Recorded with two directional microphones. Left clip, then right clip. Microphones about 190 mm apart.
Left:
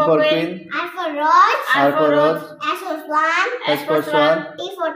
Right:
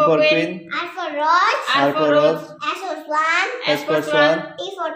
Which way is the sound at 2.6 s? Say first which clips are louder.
Left 2 dB; 20° right (ahead or behind).